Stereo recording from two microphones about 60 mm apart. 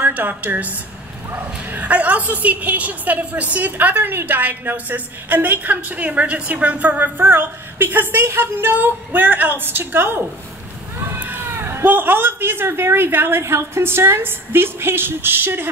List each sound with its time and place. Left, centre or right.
0.0 s a woman's voice: right
11.1 s a sound: right
11.8 s a woman's voice: right